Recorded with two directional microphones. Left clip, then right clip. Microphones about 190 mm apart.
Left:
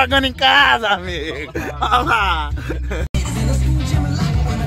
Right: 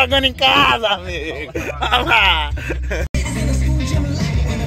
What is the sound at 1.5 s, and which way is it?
Speech, 5° left (ahead or behind).